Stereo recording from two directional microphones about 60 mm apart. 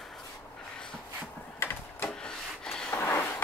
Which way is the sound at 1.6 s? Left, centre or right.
Left.